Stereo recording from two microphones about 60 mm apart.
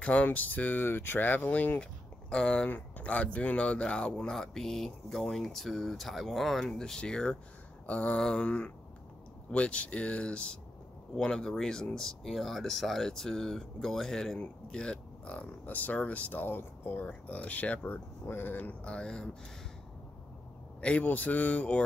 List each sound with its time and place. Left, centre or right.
0.0 s speech: left
7.8 s a sound: centre
8.2 s speech: centre
8.5 s speech: centre
15.6 s speech: left
18.2 s speech: left
18.9 s speech: centre
20.8 s speech: left